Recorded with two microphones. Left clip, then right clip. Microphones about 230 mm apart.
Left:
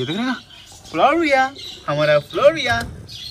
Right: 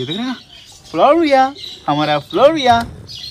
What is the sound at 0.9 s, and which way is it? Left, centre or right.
A man's voice, centre.